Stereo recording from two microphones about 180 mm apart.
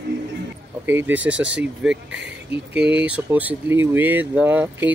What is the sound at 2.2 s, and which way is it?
Speech, 70° right (ahead or behind).